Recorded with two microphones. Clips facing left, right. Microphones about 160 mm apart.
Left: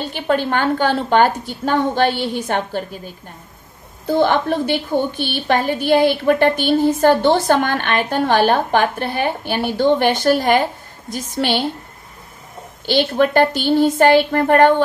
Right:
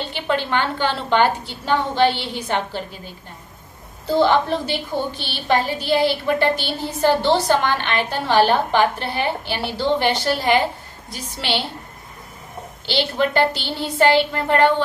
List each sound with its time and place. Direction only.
0.0 s a woman's voice: 45° left (ahead or behind)
4.1 s a woman's voice: 55° left (ahead or behind)
12.8 s a woman's voice: 50° left (ahead or behind)